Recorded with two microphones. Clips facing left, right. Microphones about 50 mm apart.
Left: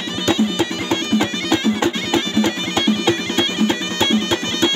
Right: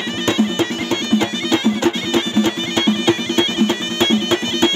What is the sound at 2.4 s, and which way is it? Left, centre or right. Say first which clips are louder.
Bagpipes: right 1 dB; right.